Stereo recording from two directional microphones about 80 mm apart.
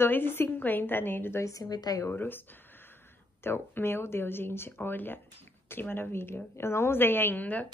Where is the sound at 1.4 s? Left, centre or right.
Left.